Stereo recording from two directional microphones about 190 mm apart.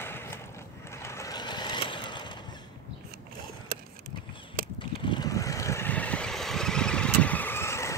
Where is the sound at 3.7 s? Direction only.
50° right (ahead or behind).